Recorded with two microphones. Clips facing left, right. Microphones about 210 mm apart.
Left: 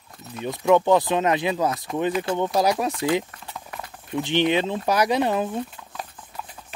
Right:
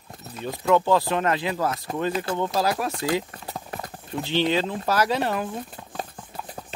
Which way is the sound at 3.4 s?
40° right (ahead or behind).